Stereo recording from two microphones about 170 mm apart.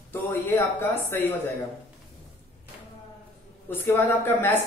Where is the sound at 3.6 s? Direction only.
15° left (ahead or behind).